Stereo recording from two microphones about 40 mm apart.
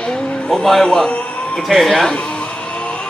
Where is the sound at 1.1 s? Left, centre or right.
Left.